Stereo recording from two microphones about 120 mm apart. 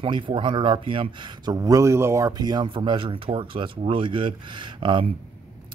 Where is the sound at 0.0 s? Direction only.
45° right (ahead or behind).